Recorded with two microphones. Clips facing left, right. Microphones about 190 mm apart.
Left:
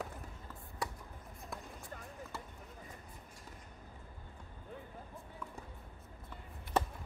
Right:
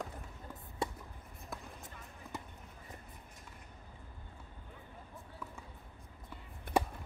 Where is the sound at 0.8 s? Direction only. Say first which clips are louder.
Right 3 dB; 25° right (ahead or behind).